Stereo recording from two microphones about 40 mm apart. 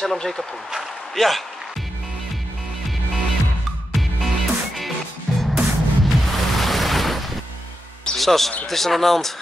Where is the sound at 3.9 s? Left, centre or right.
Centre.